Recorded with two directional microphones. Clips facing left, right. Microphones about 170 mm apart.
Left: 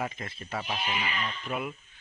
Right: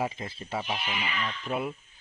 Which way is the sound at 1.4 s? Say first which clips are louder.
Right 4 dB; 30° right (ahead or behind).